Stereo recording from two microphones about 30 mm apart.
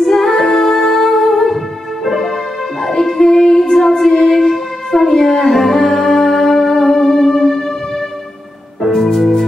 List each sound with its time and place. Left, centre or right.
0.0 s music: centre
2.9 s music: centre
4.9 s a sound: centre
5.5 s music: centre
8.9 s music: centre